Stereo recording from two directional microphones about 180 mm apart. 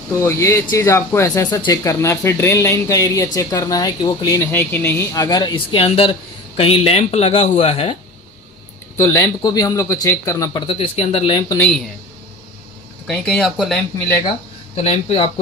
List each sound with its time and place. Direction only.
0.2 s speech: 15° left (ahead or behind); by 7.9 s 35° left (ahead or behind)
8.9 s speech: 15° left (ahead or behind)
11.5 s speech: 5° left (ahead or behind)
13.0 s speech: 5° left (ahead or behind)
14.8 s speech: 35° left (ahead or behind)